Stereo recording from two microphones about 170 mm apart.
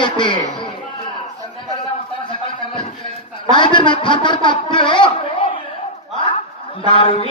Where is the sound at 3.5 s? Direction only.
30° left (ahead or behind).